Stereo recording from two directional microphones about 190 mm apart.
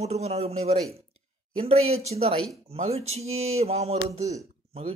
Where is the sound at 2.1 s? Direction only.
30° right (ahead or behind).